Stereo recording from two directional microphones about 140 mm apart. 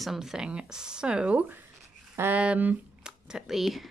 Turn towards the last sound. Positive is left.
turn(degrees=0)  # may be behind; listen again after turning